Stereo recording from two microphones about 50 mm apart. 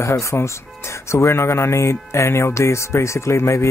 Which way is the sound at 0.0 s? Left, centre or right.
Left.